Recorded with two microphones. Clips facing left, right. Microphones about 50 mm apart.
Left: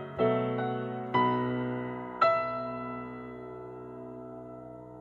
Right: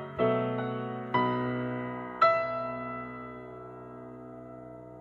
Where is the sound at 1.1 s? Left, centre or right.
Left.